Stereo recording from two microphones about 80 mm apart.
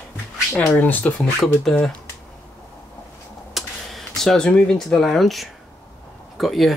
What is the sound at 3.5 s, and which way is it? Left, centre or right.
Speech, centre.